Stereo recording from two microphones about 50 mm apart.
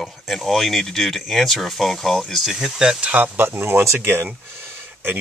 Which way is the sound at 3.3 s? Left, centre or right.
Right.